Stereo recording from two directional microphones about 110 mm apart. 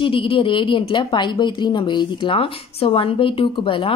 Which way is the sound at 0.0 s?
55° left (ahead or behind).